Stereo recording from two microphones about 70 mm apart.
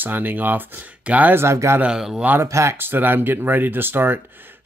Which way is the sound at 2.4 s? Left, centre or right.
Right.